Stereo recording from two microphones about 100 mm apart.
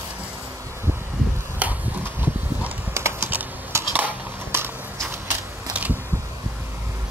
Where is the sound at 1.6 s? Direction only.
15° right (ahead or behind).